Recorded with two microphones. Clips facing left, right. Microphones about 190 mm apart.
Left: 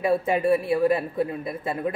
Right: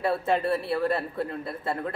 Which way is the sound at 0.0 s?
15° left (ahead or behind).